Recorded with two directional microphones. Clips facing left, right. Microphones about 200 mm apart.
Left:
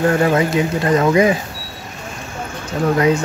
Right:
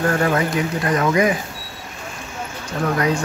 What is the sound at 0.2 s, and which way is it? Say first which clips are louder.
Speech: left 4 dB; 25° left (ahead or behind).